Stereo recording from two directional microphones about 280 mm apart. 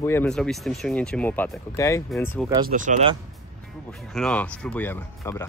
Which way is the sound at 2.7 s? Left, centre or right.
Right.